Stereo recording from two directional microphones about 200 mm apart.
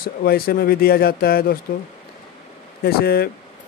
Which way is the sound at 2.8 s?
50° left (ahead or behind).